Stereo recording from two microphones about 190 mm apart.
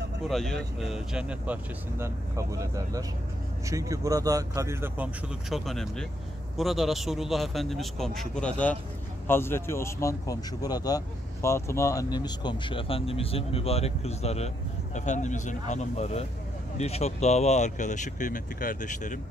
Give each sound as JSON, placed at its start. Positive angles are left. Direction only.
{"t": 0.3, "sound": "a man's voice", "side_deg": 0}